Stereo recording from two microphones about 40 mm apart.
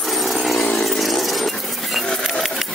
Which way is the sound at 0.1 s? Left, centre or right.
Centre.